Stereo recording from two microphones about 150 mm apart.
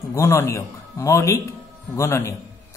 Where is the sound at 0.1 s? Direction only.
20° left (ahead or behind).